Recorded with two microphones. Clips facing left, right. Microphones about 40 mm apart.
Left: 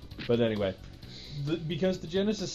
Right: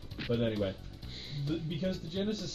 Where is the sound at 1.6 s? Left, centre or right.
Left.